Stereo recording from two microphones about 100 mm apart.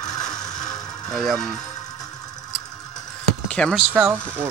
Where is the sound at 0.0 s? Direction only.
40° left (ahead or behind).